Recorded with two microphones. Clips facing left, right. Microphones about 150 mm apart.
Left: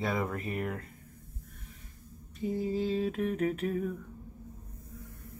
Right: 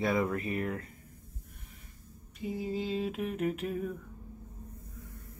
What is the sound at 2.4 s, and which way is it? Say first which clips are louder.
A man's voice: left 3 dB; centre (ahead or behind).